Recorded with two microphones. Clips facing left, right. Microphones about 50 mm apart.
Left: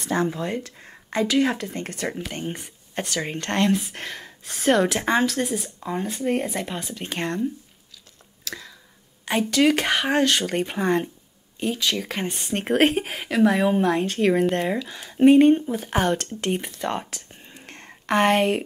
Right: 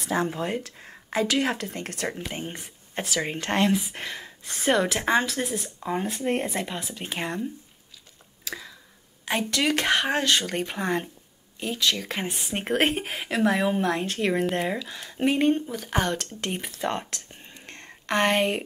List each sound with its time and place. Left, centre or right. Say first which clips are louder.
0.0 s speech: left 2 dB; centre
3.7 s speech: left 1 dB; centre
5.9 s speech: left 2 dB; centre
6.4 s speech: left 1 dB; centre
8.5 s speech: left 1 dB; centre
9.2 s speech: left 6 dB; centre
15.5 s speech: left 4 dB; centre
17.6 s a sound: left 2 dB; centre